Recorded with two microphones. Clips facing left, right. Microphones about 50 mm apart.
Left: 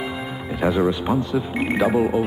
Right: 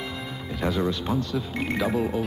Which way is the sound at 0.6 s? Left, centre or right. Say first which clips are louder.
Left 6 dB; centre.